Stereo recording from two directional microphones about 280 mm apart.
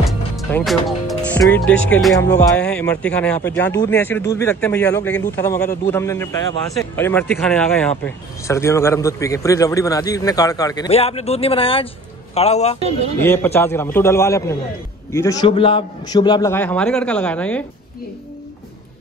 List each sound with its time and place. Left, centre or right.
0.4 s a man's voice: centre; by 12.9 s left
13.2 s a man's voice: centre